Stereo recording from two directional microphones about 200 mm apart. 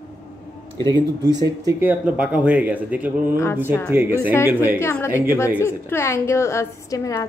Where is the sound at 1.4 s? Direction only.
15° right (ahead or behind).